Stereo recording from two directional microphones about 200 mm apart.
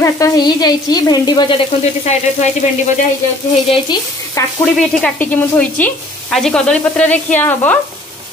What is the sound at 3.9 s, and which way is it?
Stir, 20° left (ahead or behind).